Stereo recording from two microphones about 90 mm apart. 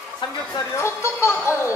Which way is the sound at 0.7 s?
30° left (ahead or behind).